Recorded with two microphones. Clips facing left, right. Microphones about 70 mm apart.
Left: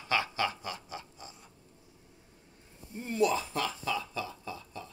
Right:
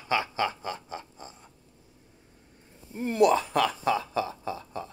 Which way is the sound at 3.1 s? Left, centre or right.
Right.